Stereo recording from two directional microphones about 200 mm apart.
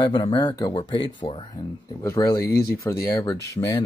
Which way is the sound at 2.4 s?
50° left (ahead or behind).